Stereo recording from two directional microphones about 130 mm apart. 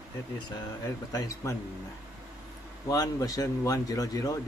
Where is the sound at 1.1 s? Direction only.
25° left (ahead or behind).